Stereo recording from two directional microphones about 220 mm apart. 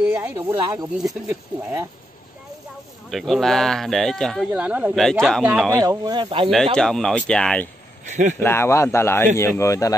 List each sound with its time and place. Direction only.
0.0 s speech: 5° right (ahead or behind)
3.1 s speech: centre (ahead or behind)
5.8 s speech: 15° right (ahead or behind)
6.5 s speech: centre (ahead or behind)
8.1 s speech: 35° right (ahead or behind)
8.4 s speech: 10° left (ahead or behind)